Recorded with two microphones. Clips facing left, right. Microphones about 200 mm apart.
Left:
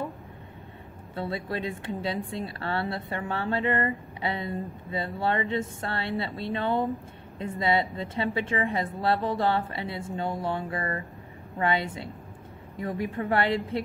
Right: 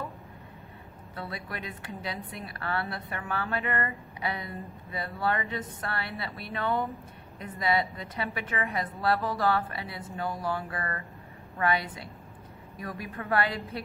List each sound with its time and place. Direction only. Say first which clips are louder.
1.1 s a woman's voice: left 7 dB; 25° left (ahead or behind)